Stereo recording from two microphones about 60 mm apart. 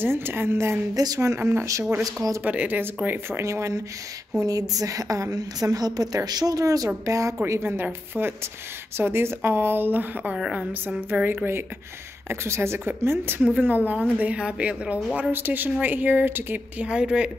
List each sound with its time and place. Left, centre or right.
0.0 s a woman's voice: right
0.9 s speech: right
1.4 s a woman's voice: right
1.7 s speech: right
2.4 s a woman's voice: right
3.3 s speech: right
4.4 s a woman's voice: right
7.1 s speech: right
7.4 s a woman's voice: right
10.5 s a woman's voice: right
13.5 s speech: right
15.1 s a woman's voice: right; by 17.3 s centre